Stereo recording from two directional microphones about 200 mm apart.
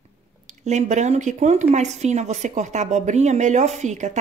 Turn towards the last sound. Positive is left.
turn(degrees=-35)  # may be behind; listen again after turning